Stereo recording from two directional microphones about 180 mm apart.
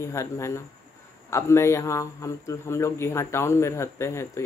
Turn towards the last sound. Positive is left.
turn(degrees=15)  # may be behind; listen again after turning